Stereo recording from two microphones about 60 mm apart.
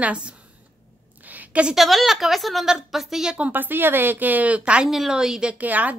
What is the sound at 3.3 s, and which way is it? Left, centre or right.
A woman's voice, right.